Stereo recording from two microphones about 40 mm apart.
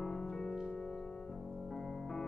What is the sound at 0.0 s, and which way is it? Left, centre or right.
Music, centre.